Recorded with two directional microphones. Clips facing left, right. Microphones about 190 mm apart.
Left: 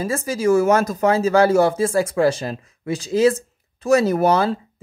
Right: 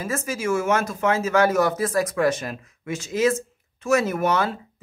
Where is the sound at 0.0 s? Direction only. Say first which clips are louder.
Left 6 dB; 35° left (ahead or behind).